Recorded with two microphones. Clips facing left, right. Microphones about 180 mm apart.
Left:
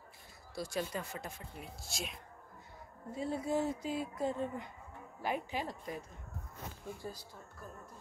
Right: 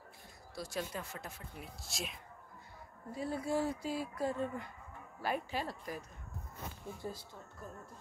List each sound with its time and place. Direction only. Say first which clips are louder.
0.6 s speech: left 3 dB; centre (ahead or behind)
3.1 s speech: left 1 dB; 25° left (ahead or behind)
7.0 s speech: right 2 dB; 25° right (ahead or behind)